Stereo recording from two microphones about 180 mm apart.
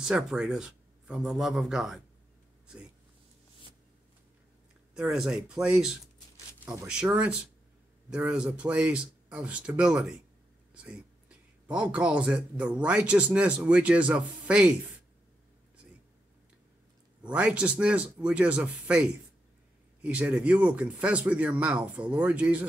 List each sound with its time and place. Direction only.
0.0 s a man's voice: 5° right (ahead or behind)
4.9 s a man's voice: 5° right (ahead or behind)
6.6 s speech: 15° right (ahead or behind)
7.1 s speech: 5° right (ahead or behind)
10.7 s a sound: 5° right (ahead or behind)
12.8 s speech: 5° right (ahead or behind)
17.2 s speech: 5° right (ahead or behind)